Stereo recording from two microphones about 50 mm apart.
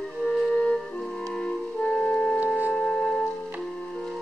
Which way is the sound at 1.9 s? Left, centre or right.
Left.